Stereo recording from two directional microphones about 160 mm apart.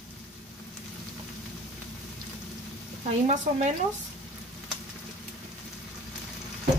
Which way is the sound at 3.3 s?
45° right (ahead or behind).